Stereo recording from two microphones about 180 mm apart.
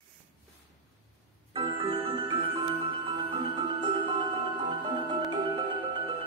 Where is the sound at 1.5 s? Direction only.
30° right (ahead or behind).